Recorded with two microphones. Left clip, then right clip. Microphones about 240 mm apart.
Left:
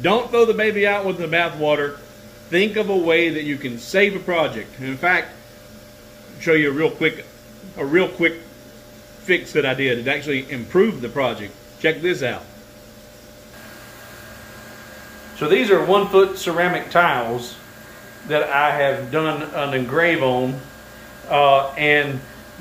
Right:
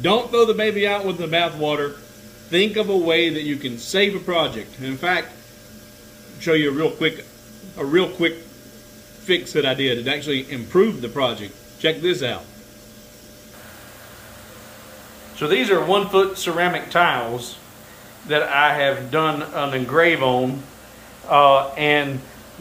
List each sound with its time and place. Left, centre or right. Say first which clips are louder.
0.0 s speech: left 1 dB; centre
6.4 s speech: left 2 dB; centre
15.3 s speech: left 2 dB; centre